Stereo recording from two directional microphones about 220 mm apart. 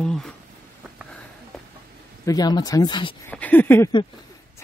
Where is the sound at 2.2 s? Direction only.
20° left (ahead or behind).